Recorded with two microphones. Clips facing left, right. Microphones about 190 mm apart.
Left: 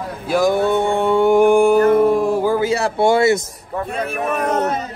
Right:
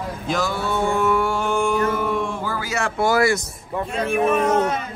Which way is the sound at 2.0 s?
35° left (ahead or behind).